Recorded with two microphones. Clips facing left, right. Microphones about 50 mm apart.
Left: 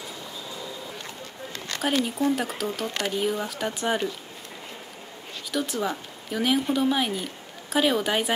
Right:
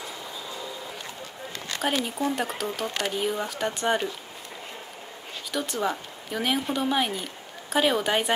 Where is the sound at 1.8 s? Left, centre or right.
Centre.